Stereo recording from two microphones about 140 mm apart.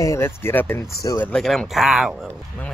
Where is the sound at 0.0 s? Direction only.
20° left (ahead or behind).